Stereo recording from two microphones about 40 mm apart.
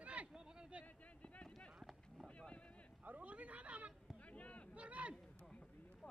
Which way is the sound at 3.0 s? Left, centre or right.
Right.